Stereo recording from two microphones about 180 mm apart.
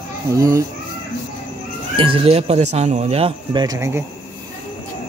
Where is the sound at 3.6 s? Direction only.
20° right (ahead or behind).